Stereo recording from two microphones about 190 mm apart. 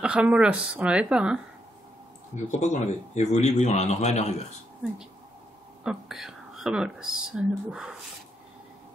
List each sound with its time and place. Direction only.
0.0 s speech: 5° right (ahead or behind)
2.3 s speech: 40° left (ahead or behind)
5.9 s speech: centre (ahead or behind)